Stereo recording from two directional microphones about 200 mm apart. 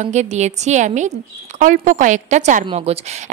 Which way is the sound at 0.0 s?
35° right (ahead or behind).